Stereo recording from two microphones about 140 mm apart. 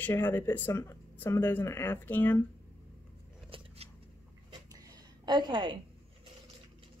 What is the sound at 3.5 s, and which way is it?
Scissors, 40° right (ahead or behind).